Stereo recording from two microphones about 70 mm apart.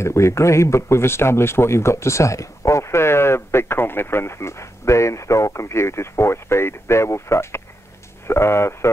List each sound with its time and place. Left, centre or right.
0.0 s speech: left